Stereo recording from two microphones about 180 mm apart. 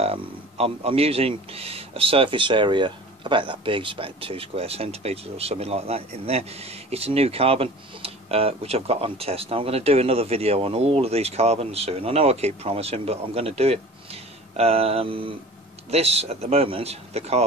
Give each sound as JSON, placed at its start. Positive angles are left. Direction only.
{"t": 0.0, "sound": "a man's voice", "side_deg": -35}